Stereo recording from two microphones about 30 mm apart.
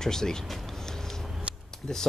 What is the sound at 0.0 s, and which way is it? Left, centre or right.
Speech, centre.